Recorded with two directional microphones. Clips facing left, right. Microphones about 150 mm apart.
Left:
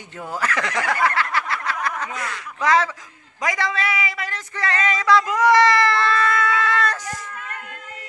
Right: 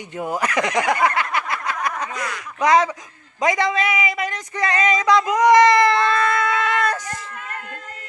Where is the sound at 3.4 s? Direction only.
20° right (ahead or behind).